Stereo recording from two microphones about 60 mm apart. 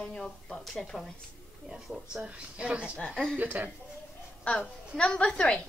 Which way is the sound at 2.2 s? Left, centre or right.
Centre.